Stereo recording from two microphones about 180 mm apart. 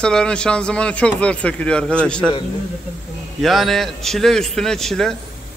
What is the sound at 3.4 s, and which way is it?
Speech, centre (ahead or behind).